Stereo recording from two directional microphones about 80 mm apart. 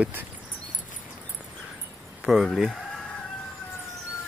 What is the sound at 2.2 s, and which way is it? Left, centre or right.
Speech, centre.